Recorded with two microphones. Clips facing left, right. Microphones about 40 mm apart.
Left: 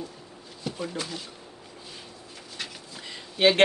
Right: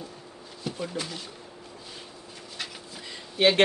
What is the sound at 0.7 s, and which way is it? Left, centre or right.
Speech, centre.